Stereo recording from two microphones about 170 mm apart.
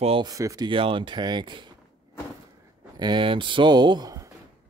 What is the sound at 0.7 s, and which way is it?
Speech, 30° right (ahead or behind).